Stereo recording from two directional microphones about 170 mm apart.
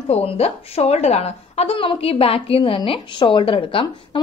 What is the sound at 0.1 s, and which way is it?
A woman's voice, 35° left (ahead or behind).